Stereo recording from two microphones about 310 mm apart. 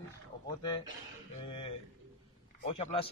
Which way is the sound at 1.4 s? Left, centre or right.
Centre.